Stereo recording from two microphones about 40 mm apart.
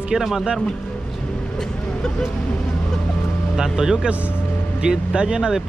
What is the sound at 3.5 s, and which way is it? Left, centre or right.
Speech, centre.